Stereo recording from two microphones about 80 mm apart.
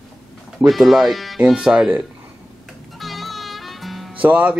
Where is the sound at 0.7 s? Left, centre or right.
Centre.